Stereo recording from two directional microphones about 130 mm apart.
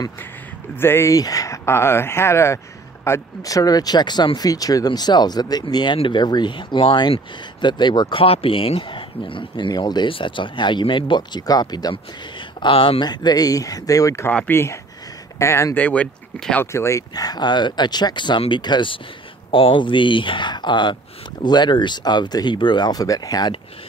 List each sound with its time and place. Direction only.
0.7 s speech: 20° left (ahead or behind); by 12.0 s 35° left (ahead or behind)
12.6 s speech: 45° left (ahead or behind)
13.0 s speech: 35° left (ahead or behind); by 16.6 s 10° left (ahead or behind)
16.7 s speech: 20° left (ahead or behind)